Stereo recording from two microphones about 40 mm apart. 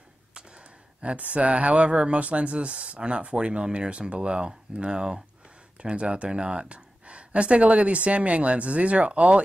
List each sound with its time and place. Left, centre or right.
0.3 s speech: right